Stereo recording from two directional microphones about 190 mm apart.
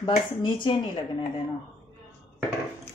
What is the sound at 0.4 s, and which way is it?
Speech, 25° left (ahead or behind).